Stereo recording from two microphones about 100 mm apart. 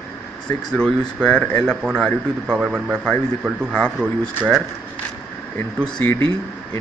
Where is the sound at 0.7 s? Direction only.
5° left (ahead or behind).